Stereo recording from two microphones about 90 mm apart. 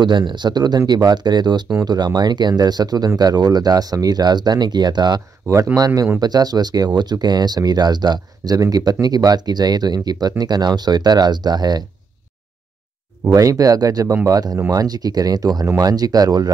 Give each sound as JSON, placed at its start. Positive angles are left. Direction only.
{"t": 0.0, "sound": "speech", "side_deg": -55}
{"t": 5.5, "sound": "speech", "side_deg": -35}
{"t": 13.3, "sound": "speech", "side_deg": -40}